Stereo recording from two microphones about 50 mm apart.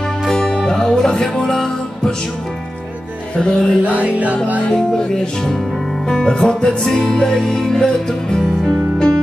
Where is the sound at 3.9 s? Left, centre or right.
Right.